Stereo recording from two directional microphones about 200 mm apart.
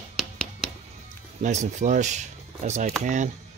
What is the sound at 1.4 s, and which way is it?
Speech, 40° right (ahead or behind).